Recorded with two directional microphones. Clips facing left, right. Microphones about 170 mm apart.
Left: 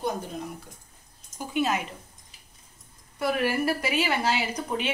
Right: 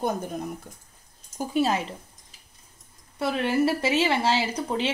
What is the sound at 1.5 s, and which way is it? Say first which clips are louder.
Speech: right 2 dB; 30° right (ahead or behind).